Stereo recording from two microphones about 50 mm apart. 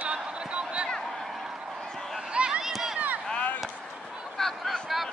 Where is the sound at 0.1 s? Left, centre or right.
Right.